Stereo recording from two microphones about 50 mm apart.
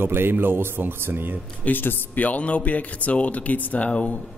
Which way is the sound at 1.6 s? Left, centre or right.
Left.